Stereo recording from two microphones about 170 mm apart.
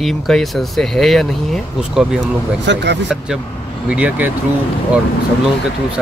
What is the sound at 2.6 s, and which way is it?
Speech, 90° right.